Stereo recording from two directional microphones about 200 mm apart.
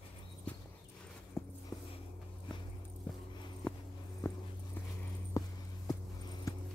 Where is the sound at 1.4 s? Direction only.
15° left (ahead or behind).